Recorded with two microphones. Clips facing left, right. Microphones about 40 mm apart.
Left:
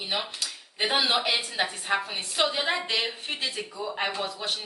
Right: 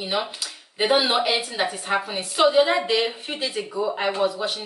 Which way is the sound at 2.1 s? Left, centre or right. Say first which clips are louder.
Right 7 dB; centre.